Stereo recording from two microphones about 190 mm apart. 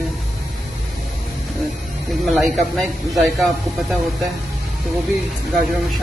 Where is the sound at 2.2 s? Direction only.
Centre (ahead or behind).